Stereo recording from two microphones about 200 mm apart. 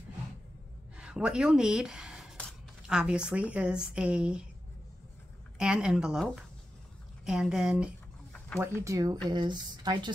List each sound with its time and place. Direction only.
0.9 s speech: 5° right (ahead or behind)
5.6 s speech: 5° right (ahead or behind)
8.8 s speech: 20° right (ahead or behind)